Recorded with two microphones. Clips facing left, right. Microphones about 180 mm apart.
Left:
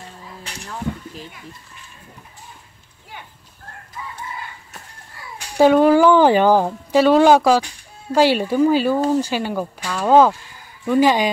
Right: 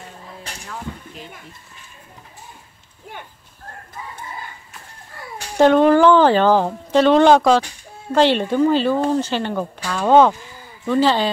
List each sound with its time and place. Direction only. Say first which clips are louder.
5.6 s speech: even; 10° left (ahead or behind)